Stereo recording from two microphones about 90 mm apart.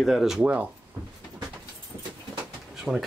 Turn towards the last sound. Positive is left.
turn(degrees=0)  # may be behind; listen again after turning